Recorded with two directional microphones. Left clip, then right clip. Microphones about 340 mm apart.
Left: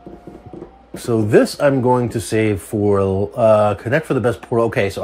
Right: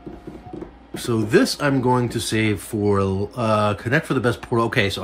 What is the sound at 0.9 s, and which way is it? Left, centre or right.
Speech, centre.